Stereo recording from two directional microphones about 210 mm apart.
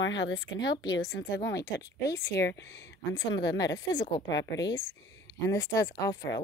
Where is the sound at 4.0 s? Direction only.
20° left (ahead or behind).